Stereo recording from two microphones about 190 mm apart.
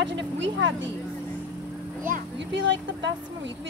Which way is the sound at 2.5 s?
70° right (ahead or behind).